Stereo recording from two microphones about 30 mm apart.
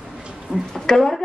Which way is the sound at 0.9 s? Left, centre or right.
Left.